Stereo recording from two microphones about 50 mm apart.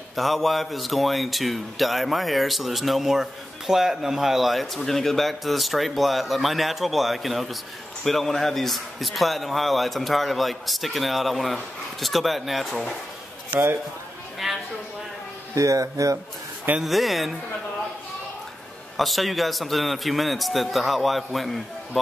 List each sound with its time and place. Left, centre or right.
0.1 s speech: centre
14.4 s a sound: centre
15.5 s speech: right
16.8 s speech: centre
18.9 s speech: centre